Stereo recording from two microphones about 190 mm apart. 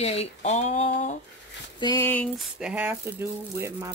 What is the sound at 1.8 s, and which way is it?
Speech, 15° left (ahead or behind).